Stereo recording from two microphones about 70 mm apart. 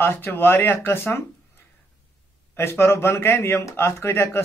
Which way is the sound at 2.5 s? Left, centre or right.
Left.